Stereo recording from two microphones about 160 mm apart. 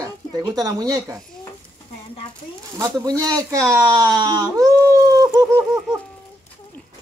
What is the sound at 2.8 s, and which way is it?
Speech, 25° right (ahead or behind).